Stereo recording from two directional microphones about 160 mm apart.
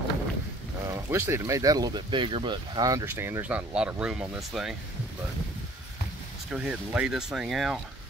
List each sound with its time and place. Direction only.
0.8 s speech: 15° right (ahead or behind)
6.5 s speech: 5° right (ahead or behind)